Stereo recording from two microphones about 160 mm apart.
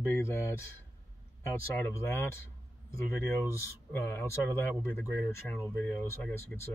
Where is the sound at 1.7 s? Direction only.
15° left (ahead or behind).